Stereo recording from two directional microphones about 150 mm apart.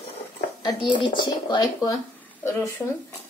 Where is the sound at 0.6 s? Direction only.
30° left (ahead or behind).